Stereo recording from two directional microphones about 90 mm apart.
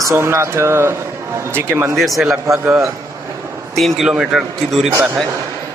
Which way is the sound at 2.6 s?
35° right (ahead or behind).